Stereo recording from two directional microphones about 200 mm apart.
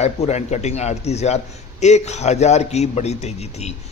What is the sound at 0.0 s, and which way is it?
A man's voice, 35° left (ahead or behind).